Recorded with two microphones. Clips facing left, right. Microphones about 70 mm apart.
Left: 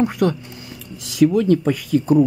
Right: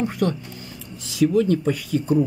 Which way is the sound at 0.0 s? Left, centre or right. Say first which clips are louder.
Left 4 dB; left.